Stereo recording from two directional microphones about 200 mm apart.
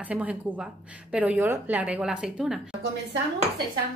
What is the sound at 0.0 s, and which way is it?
A woman's voice, 5° right (ahead or behind).